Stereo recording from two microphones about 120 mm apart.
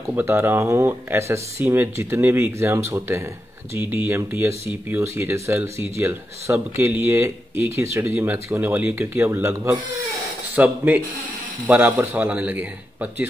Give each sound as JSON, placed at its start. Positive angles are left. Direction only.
{"t": 0.1, "sound": "speech", "side_deg": -20}